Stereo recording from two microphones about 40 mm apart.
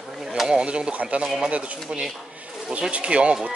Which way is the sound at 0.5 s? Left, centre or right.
Right.